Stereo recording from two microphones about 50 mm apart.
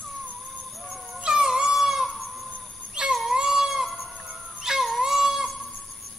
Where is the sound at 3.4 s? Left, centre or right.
Centre.